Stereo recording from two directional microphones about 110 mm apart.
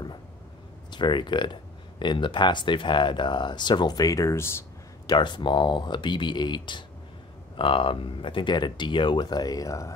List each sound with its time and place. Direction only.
0.9 s speech: 45° left (ahead or behind); by 4.5 s 30° left (ahead or behind)
5.0 s speech: 45° left (ahead or behind)